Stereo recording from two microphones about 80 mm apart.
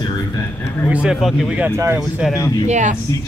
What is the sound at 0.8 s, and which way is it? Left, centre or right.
Speech, centre.